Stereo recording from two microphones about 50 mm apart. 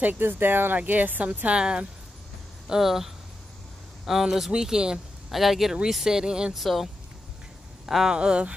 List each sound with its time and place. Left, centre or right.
0.2 s speech: right
1.6 s speech: centre
2.7 s speech: centre
5.3 s speech: centre
6.5 s speech: centre
7.9 s speech: centre